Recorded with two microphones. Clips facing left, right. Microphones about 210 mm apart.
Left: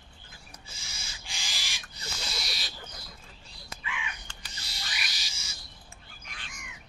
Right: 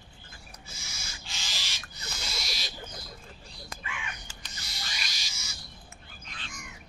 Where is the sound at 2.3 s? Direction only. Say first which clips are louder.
Right 1 dB; centre (ahead or behind).